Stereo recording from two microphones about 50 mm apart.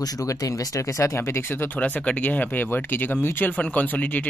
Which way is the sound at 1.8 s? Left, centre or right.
Left.